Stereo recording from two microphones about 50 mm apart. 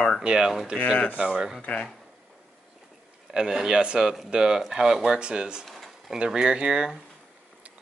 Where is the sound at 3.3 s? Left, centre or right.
Centre.